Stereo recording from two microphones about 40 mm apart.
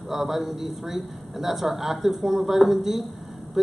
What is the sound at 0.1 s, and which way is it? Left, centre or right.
A man's voice, centre.